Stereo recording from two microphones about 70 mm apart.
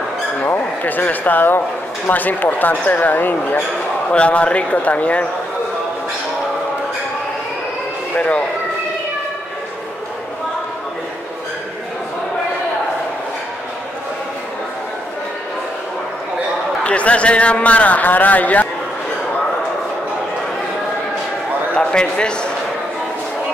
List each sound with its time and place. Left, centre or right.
0.4 s a man's voice: left
16.8 s a man's voice: centre
21.7 s a sound: centre